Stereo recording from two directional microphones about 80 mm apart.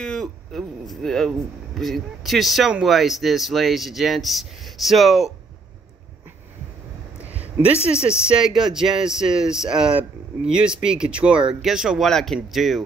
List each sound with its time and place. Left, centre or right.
0.0 s speech: centre
7.9 s speech: centre
12.1 s speech: centre